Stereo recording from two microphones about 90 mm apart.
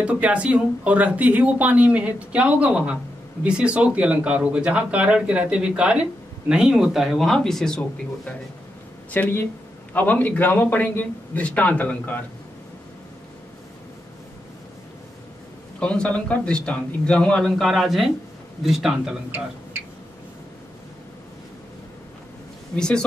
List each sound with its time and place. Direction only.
0.0 s speech: 15° right (ahead or behind); by 7.8 s 5° left (ahead or behind)
9.1 s a man's voice: 20° left (ahead or behind)
15.8 s a man's voice: 10° left (ahead or behind)
22.8 s a man's voice: 10° left (ahead or behind)